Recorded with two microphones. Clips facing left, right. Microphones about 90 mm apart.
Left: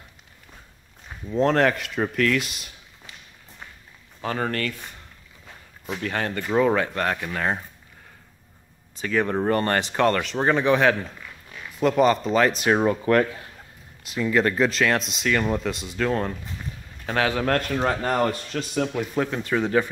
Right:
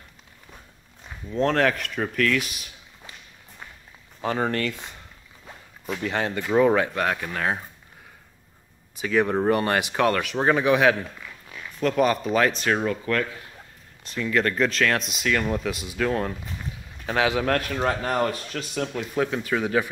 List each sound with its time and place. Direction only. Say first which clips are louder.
1.3 s speech: left 2 dB; 5° left (ahead or behind)
4.2 s speech: right 2 dB; 15° right (ahead or behind)
5.9 s speech: right 1 dB; 15° right (ahead or behind)
6.4 s speech: right 1 dB; 5° right (ahead or behind)
9.0 s speech: right 1 dB; 10° right (ahead or behind)
12.0 s speech: left 2 dB; 5° right (ahead or behind)
12.6 s speech: left 4 dB; 25° left (ahead or behind)
14.0 s speech: left 2 dB; 5° left (ahead or behind)
17.0 s a man's voice: even; 15° right (ahead or behind)